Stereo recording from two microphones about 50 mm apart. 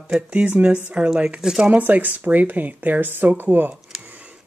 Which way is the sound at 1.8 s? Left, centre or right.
Right.